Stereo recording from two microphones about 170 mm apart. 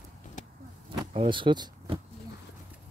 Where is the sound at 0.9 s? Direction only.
30° right (ahead or behind).